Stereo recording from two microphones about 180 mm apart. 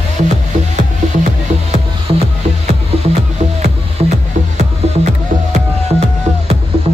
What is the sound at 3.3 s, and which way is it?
Music, 40° right (ahead or behind).